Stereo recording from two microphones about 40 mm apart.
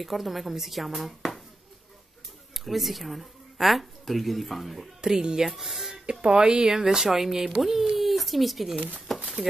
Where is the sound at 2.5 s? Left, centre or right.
Centre.